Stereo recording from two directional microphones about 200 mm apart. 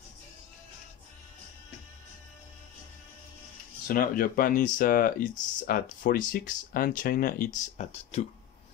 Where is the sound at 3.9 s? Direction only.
45° left (ahead or behind).